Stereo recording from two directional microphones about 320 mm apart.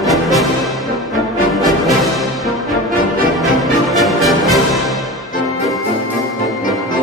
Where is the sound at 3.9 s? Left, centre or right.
Centre.